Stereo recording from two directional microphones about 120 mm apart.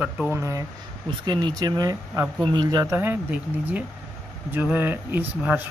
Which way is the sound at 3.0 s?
15° right (ahead or behind).